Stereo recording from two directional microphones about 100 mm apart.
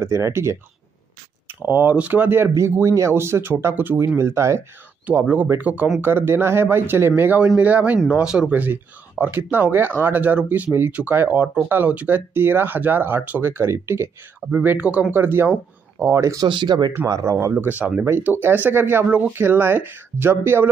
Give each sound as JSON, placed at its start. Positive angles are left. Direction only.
{"t": 0.0, "sound": "speech", "side_deg": -25}
{"t": 5.0, "sound": "speech", "side_deg": -15}
{"t": 16.1, "sound": "speech", "side_deg": -30}
{"t": 16.4, "sound": "speech", "side_deg": -50}
{"t": 17.1, "sound": "speech", "side_deg": -30}